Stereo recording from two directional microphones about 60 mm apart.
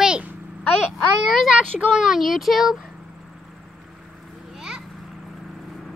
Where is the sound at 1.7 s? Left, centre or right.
Centre.